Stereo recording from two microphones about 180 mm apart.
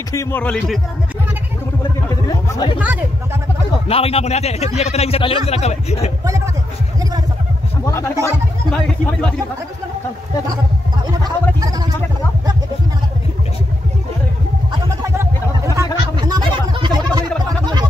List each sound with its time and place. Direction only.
0.1 s speech: 15° left (ahead or behind)
2.0 s speech: 20° left (ahead or behind)
2.8 s speech: 10° right (ahead or behind)
3.8 s speech: 35° left (ahead or behind)
6.2 s speech: 15° right (ahead or behind)
7.8 s speech: 15° left (ahead or behind)
8.6 s speech: 5° left (ahead or behind)
14.7 s a sound: 15° right (ahead or behind)